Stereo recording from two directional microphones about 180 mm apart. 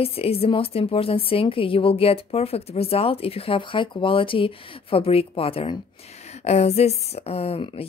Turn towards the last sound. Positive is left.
turn(degrees=30)  # may be behind; listen again after turning